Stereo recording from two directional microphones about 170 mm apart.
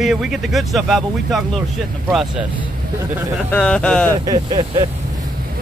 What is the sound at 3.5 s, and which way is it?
Speech, 5° left (ahead or behind).